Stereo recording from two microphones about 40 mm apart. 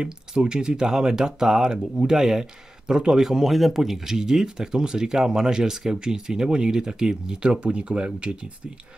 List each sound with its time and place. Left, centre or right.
0.0 s speech: right